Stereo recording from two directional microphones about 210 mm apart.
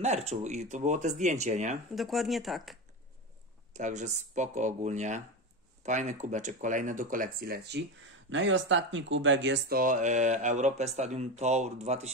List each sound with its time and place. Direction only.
0.0 s speech: 30° right (ahead or behind)
2.0 s speech: centre (ahead or behind)
3.7 s speech: 35° right (ahead or behind)
8.3 s speech: 60° right (ahead or behind); by 12.1 s 30° right (ahead or behind)